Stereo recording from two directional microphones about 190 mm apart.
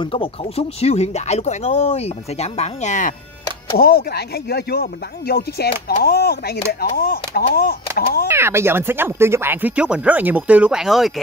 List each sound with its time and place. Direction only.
0.0 s speech: 30° left (ahead or behind)
3.7 s speech: 55° left (ahead or behind)
8.3 s speech: 15° right (ahead or behind)